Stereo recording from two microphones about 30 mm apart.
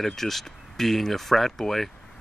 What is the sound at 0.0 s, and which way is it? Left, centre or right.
Speech, centre.